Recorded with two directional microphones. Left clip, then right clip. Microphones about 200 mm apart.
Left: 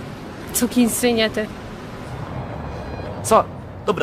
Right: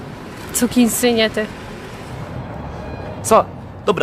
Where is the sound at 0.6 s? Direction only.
15° right (ahead or behind).